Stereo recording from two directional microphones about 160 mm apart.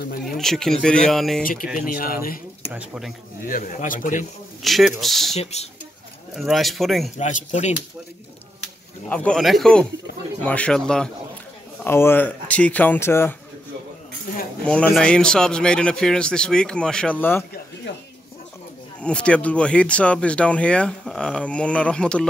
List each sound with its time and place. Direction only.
0.4 s a man's voice: centre (ahead or behind)
1.4 s speech: 60° left (ahead or behind)
2.7 s a man's voice: 5° right (ahead or behind)
3.4 s speech: 55° left (ahead or behind)
4.6 s a man's voice: centre (ahead or behind)
5.3 s speech: 40° left (ahead or behind)
6.3 s a man's voice: centre (ahead or behind)
7.2 s speech: 50° left (ahead or behind)
9.1 s a man's voice: 5° left (ahead or behind)
14.3 s a sound: 60° left (ahead or behind)
14.6 s a man's voice: 5° left (ahead or behind)
18.9 s speech: 5° left (ahead or behind)